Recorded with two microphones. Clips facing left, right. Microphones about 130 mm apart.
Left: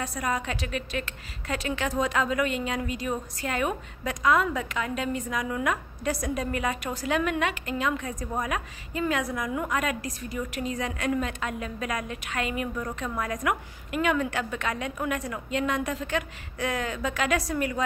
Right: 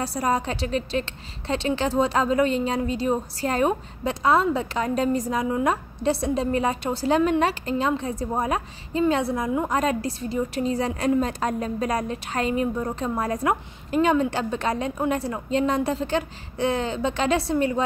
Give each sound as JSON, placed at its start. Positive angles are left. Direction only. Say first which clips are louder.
{"t": 0.0, "sound": "a woman's voice", "louder": "right 5 dB", "side_deg": -35}